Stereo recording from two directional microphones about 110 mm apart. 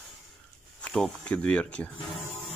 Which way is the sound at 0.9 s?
10° left (ahead or behind).